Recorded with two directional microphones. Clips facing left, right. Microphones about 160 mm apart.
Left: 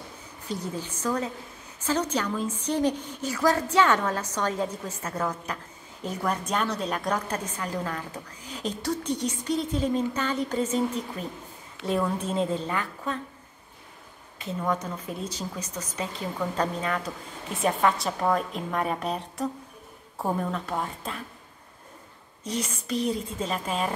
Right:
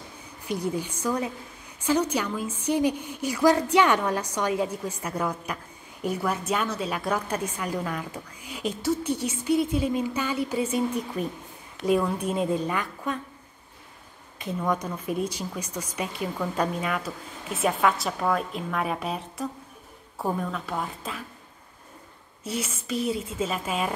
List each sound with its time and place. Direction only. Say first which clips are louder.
0.5 s a woman's voice: right 4 dB; 10° right (ahead or behind)
14.7 s a woman's voice: right 2 dB; 15° right (ahead or behind)
22.4 s speech: even; 5° right (ahead or behind)